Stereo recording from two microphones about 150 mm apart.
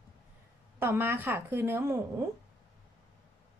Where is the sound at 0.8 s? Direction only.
15° right (ahead or behind).